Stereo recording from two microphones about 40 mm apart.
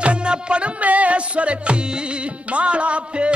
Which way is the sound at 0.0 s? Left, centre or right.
Right.